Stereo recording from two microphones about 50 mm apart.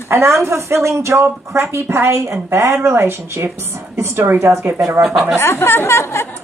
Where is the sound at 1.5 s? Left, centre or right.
Right.